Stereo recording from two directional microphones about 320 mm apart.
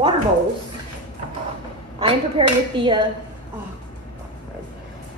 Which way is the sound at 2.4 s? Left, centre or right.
Centre.